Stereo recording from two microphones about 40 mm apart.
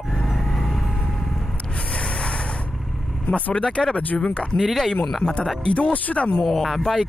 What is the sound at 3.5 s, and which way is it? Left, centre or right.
Speech, left.